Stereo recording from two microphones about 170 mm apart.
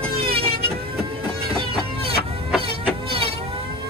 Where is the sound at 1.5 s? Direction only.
35° right (ahead or behind).